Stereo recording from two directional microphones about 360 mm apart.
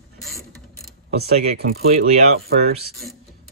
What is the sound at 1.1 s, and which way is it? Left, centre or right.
Speech, right.